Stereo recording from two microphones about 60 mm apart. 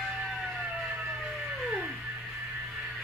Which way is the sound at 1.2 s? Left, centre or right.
Centre.